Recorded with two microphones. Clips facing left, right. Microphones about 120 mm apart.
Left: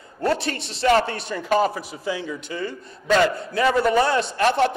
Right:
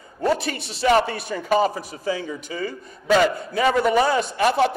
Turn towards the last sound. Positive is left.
turn(degrees=-5)  # may be behind; listen again after turning